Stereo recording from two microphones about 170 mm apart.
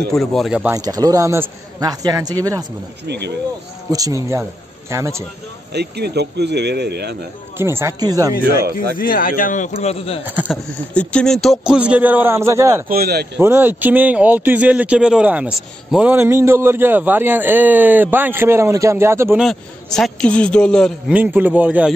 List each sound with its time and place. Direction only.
0.1 s a man's voice: centre (ahead or behind)
0.7 s a man's voice: 20° right (ahead or behind)
3.1 s speech: 80° right
3.9 s a man's voice: 20° right (ahead or behind)
5.7 s speech: 75° right (ahead or behind)
7.5 s a man's voice: 15° right (ahead or behind)
8.9 s speech: 55° left (ahead or behind); by 10.2 s 35° left (ahead or behind)
10.2 s speech: 10° right (ahead or behind)
11.0 s speech: 5° left (ahead or behind); by 12.8 s 15° right (ahead or behind)
12.8 s speech: 60° right (ahead or behind)
13.4 s speech: 15° right (ahead or behind)
19.4 s a man's voice: 5° left (ahead or behind)
21.1 s speech: 10° right (ahead or behind)